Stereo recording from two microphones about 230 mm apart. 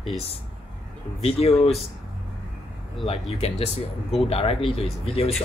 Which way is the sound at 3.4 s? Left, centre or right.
Left.